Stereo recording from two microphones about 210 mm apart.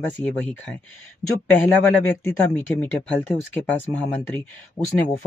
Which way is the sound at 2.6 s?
10° left (ahead or behind).